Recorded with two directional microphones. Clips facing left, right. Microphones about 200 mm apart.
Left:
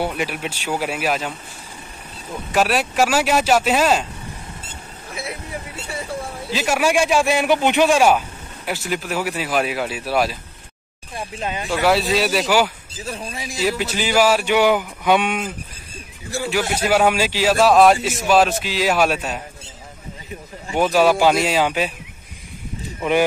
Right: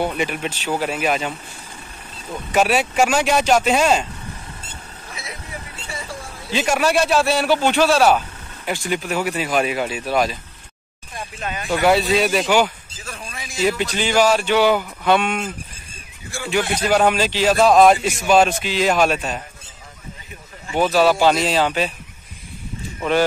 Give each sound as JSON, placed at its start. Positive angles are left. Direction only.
{"t": 0.0, "sound": "speech", "side_deg": 5}
{"t": 2.5, "sound": "speech", "side_deg": 0}
{"t": 6.5, "sound": "speech", "side_deg": 5}
{"t": 11.3, "sound": "speech", "side_deg": 25}
{"t": 11.7, "sound": "speech", "side_deg": 0}
{"t": 13.0, "sound": "a man's voice", "side_deg": 35}
{"t": 13.7, "sound": "speech", "side_deg": 5}
{"t": 16.4, "sound": "speech", "side_deg": 5}
{"t": 20.7, "sound": "speech", "side_deg": 10}